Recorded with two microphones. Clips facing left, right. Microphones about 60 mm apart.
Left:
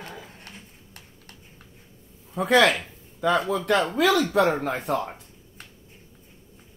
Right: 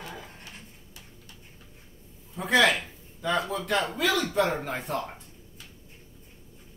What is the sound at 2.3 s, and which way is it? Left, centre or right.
A man's voice, left.